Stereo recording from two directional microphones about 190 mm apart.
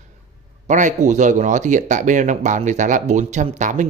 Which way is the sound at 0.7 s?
40° right (ahead or behind).